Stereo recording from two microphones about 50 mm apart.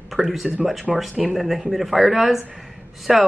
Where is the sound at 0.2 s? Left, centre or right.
Centre.